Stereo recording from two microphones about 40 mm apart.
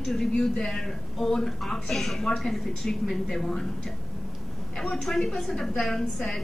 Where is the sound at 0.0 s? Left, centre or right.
Centre.